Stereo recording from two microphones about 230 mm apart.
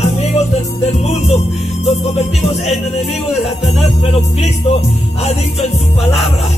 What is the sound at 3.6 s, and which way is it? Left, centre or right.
Speech, left.